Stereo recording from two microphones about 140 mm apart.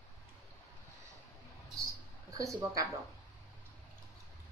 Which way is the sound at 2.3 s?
25° right (ahead or behind).